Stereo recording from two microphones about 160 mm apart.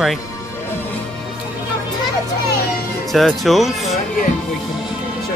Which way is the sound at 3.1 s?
Centre (ahead or behind).